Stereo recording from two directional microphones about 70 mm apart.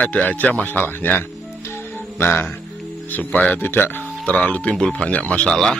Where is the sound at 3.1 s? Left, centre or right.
Left.